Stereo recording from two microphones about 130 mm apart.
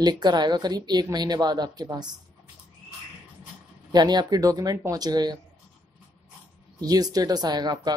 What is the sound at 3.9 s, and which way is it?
Speech, 30° right (ahead or behind).